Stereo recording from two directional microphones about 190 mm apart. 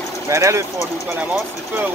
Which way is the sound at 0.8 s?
Centre (ahead or behind).